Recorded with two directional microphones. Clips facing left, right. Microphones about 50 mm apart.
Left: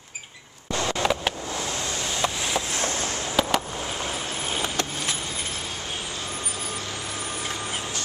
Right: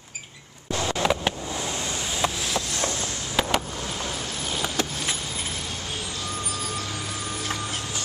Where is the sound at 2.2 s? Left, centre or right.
Centre.